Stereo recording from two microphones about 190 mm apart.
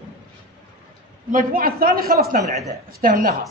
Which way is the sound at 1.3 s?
50° right (ahead or behind).